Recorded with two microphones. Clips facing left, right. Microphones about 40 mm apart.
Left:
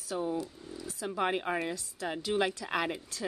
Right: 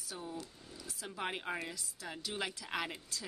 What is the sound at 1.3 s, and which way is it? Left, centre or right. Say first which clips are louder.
Speech: left 5 dB; left.